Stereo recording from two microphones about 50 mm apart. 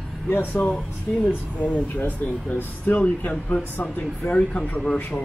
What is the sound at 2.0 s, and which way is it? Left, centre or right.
Speech, left.